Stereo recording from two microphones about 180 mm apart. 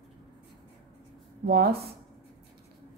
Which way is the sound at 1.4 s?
60° right (ahead or behind).